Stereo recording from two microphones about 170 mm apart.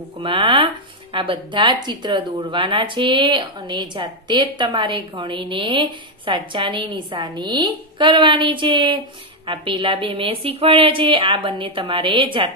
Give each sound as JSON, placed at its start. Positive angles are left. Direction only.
{"t": 0.2, "sound": "a woman's voice", "side_deg": -30}